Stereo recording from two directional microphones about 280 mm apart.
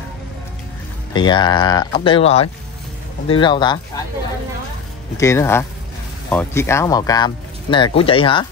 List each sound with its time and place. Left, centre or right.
1.1 s speech: centre
5.1 s speech: centre